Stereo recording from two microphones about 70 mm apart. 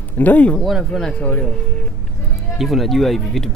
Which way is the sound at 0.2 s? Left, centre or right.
Left.